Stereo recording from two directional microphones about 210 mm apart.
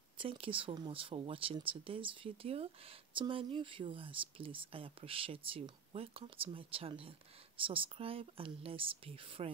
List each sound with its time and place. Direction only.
0.2 s speech: 25° right (ahead or behind)